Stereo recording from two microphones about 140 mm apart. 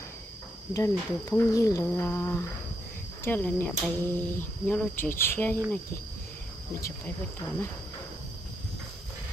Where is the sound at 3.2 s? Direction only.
15° left (ahead or behind).